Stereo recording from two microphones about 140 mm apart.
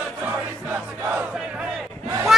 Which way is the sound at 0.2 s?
15° right (ahead or behind).